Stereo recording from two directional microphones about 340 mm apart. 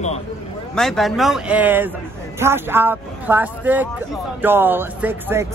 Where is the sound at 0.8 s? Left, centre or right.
Centre.